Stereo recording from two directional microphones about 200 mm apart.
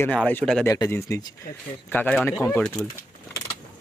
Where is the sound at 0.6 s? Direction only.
15° left (ahead or behind).